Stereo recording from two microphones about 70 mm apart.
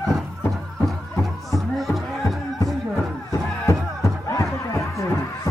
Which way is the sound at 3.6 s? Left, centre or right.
Left.